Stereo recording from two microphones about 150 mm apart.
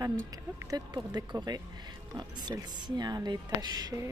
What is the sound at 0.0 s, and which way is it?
Speech, 25° right (ahead or behind).